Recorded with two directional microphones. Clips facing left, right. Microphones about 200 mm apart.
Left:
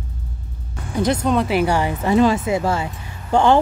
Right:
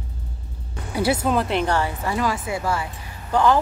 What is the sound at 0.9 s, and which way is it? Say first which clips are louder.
Speech: left 2 dB; 10° right (ahead or behind).